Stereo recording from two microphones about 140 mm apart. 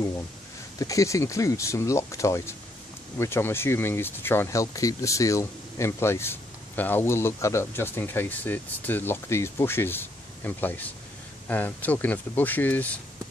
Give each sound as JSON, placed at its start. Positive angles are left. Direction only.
{"t": 0.7, "sound": "speech", "side_deg": 25}